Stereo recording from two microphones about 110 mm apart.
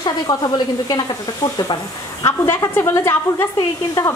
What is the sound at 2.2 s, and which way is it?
Speech, 25° left (ahead or behind).